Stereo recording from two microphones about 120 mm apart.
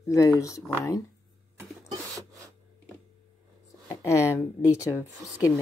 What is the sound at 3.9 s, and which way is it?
Speech, 25° left (ahead or behind).